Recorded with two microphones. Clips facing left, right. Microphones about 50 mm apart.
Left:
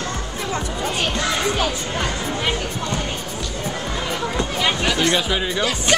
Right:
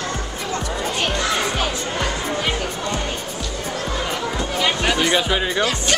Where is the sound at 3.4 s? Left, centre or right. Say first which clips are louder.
Even; centre.